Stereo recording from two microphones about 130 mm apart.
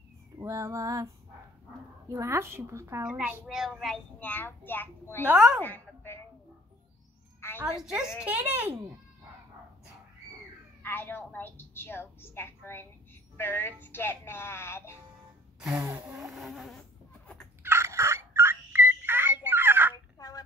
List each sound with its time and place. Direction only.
0.4 s a woman's voice: 25° right (ahead or behind)
3.0 s a woman's voice: 5° right (ahead or behind)
4.2 s a woman's voice: 15° left (ahead or behind)
5.2 s speech: 15° right (ahead or behind)
5.6 s a sound: 15° left (ahead or behind)
7.3 s a sound: 20° left (ahead or behind)
7.6 s a woman's voice: 5° right (ahead or behind)
10.8 s a woman's voice: 15° left (ahead or behind)
15.9 s speech: 15° right (ahead or behind)
16.3 s a woman's voice: centre (ahead or behind)
17.6 s turkey: 20° right (ahead or behind)
19.5 s a sound: 15° right (ahead or behind)
20.2 s a sound: 30° left (ahead or behind)